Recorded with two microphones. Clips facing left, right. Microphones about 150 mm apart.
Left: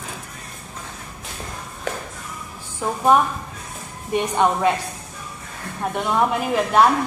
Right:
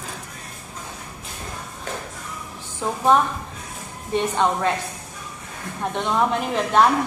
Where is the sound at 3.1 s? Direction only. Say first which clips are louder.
Left 1 dB; 10° left (ahead or behind).